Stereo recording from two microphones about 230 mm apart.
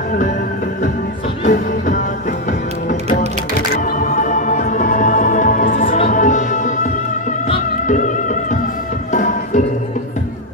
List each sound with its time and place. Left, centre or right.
1.4 s music: left